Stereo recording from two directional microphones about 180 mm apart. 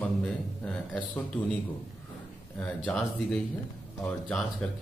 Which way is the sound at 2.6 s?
5° left (ahead or behind).